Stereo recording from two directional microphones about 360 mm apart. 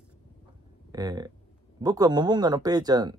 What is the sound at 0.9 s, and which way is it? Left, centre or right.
Speech, centre.